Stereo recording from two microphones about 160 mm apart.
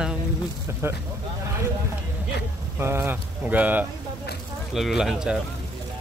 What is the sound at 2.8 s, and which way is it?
Speech, 15° right (ahead or behind).